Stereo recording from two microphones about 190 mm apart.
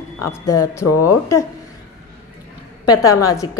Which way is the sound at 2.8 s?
20° left (ahead or behind).